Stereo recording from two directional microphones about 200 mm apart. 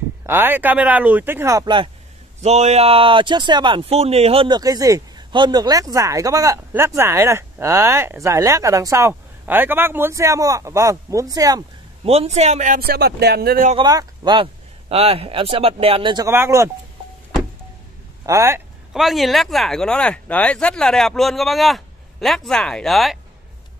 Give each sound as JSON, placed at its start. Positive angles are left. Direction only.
{"t": 0.3, "sound": "speech", "side_deg": -10}
{"t": 2.4, "sound": "speech", "side_deg": -35}
{"t": 12.0, "sound": "a man's voice", "side_deg": -30}
{"t": 13.8, "sound": "speech", "side_deg": -20}
{"t": 16.3, "sound": "speech", "side_deg": -10}
{"t": 18.2, "sound": "speech", "side_deg": -15}
{"t": 18.9, "sound": "speech", "side_deg": 0}